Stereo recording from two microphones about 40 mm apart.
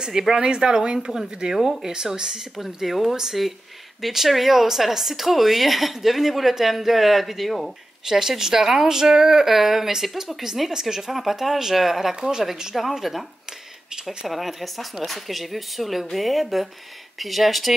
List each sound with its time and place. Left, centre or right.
0.0 s speech: centre